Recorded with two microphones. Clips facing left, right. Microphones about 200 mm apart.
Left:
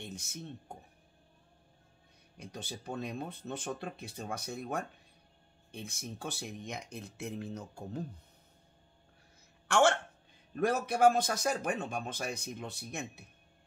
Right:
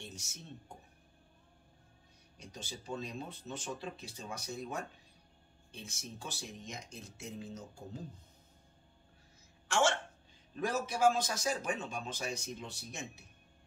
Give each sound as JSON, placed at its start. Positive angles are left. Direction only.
{"t": 0.0, "sound": "a sound", "side_deg": 60}
{"t": 2.3, "sound": "a man's voice", "side_deg": 60}
{"t": 9.7, "sound": "a man's voice", "side_deg": 60}